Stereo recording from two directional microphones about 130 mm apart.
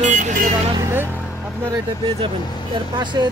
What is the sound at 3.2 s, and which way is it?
Speech, 30° right (ahead or behind).